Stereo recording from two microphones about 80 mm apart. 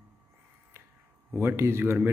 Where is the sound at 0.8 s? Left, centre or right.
Right.